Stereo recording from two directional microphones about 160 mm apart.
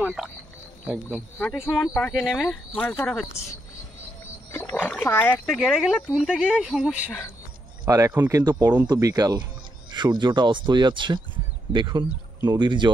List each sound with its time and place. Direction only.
0.0 s speech: 5° right (ahead or behind)
4.5 s wild animals: 10° left (ahead or behind)
5.0 s speech: 15° left (ahead or behind)
5.5 s speech: centre (ahead or behind)
7.9 s speech: 20° right (ahead or behind)